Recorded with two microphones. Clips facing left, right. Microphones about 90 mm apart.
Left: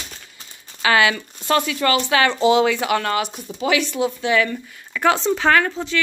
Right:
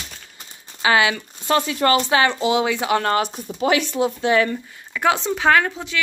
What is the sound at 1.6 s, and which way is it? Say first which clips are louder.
Speech: right 1 dB; 35° right (ahead or behind).